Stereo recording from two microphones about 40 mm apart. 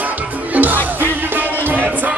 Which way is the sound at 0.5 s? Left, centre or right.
Right.